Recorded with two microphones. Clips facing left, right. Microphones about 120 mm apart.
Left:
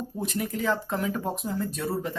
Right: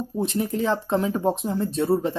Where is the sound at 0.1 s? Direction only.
25° right (ahead or behind).